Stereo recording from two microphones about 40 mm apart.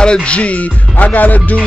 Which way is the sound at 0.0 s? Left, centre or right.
Left.